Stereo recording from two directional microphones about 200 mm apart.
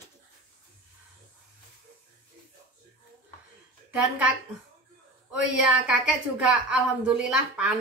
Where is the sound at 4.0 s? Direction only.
5° right (ahead or behind).